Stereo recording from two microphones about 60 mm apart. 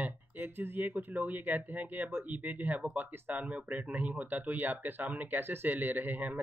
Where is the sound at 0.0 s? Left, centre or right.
Right.